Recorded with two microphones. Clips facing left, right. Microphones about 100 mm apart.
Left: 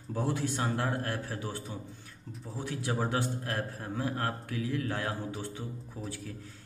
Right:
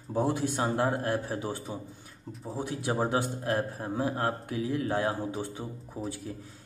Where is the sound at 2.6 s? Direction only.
20° right (ahead or behind).